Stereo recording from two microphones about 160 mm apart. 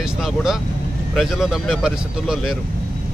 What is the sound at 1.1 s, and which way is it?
Speech, centre (ahead or behind).